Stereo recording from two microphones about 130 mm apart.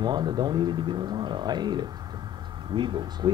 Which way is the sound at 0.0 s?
35° right (ahead or behind).